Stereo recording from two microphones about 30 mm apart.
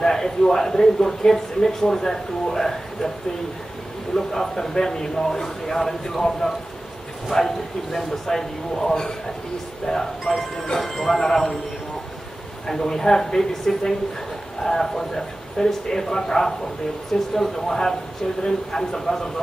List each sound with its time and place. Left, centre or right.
0.0 s speech: centre
4.1 s speech: centre
12.6 s speech: centre